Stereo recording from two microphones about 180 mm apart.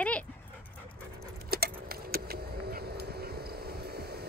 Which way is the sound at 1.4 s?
60° right (ahead or behind).